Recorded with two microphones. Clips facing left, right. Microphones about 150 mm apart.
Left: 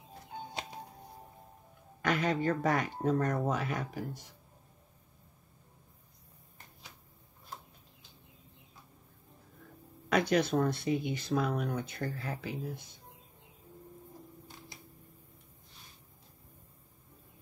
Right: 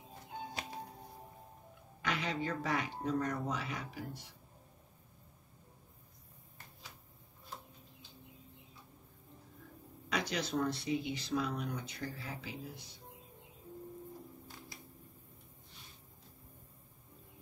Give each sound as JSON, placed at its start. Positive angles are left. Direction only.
{"t": 2.0, "sound": "speech", "side_deg": 50}
{"t": 10.0, "sound": "speech", "side_deg": 50}